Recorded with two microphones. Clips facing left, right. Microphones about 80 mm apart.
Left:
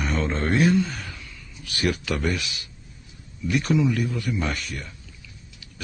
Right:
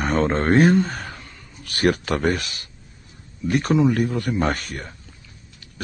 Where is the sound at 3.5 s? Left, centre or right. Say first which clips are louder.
Right 3 dB; right.